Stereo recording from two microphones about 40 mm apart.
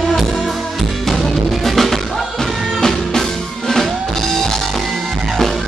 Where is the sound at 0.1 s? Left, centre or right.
Centre.